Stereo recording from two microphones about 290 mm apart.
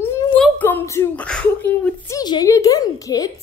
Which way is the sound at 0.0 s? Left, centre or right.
Centre.